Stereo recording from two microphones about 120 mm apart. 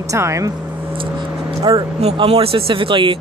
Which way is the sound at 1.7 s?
40° right (ahead or behind).